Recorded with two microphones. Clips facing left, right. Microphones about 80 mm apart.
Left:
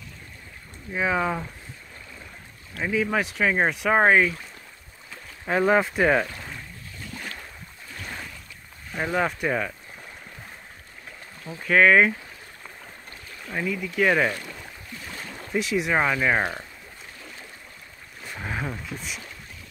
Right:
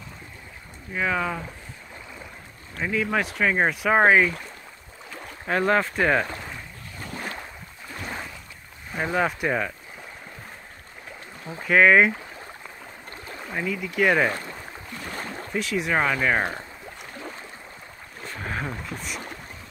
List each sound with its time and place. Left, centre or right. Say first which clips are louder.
0.9 s speech: left 1 dB; centre
2.8 s speech: even; centre
5.5 s speech: left 1 dB; centre
7.0 s boat: right 4 dB; right
8.9 s speech: right 1 dB; centre
11.6 s speech: right 1 dB; centre
13.5 s speech: left 1 dB; centre
15.0 s boat: right 5 dB; right
15.5 s speech: left 1 dB; centre
18.4 s a sound: even; centre